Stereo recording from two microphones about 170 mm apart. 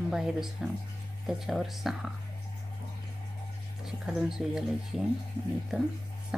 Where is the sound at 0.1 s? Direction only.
5° right (ahead or behind).